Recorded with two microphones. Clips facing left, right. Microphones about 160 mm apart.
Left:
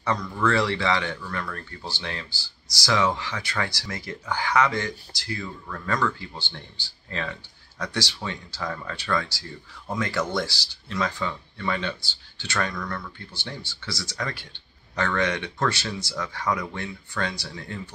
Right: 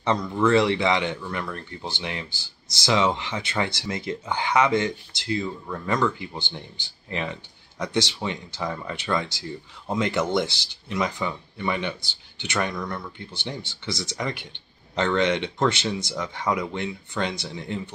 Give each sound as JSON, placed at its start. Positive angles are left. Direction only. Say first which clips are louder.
{"t": 0.0, "sound": "speech", "louder": "right 3 dB", "side_deg": -25}